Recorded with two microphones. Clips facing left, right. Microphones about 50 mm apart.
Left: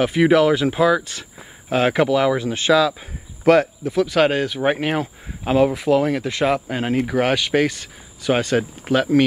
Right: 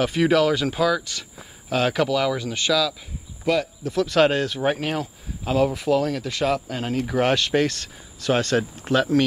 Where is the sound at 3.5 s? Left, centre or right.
Left.